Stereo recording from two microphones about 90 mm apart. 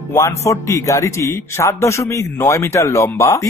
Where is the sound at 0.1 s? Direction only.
35° left (ahead or behind).